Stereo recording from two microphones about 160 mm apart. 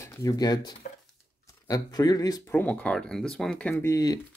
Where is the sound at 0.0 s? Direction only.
20° left (ahead or behind).